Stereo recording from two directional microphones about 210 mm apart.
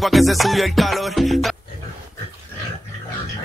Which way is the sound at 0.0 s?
Centre (ahead or behind).